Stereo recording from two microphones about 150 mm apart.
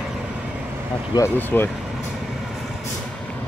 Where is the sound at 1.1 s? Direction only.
15° left (ahead or behind).